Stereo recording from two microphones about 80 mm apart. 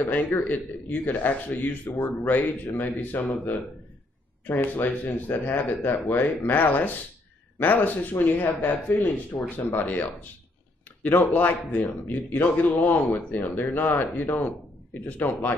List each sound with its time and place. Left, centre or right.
0.0 s speech: left